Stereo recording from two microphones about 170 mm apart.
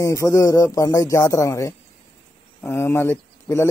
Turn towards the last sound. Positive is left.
turn(degrees=15)  # may be behind; listen again after turning